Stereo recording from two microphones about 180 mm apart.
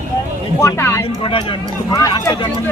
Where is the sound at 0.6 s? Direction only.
15° left (ahead or behind).